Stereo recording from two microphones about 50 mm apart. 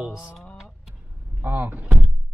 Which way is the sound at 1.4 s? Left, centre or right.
Right.